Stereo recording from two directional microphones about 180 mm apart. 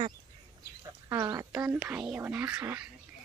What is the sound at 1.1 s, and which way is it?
Speech, 20° right (ahead or behind).